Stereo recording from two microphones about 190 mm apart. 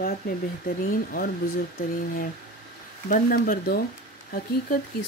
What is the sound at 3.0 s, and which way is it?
Speech, 50° left (ahead or behind).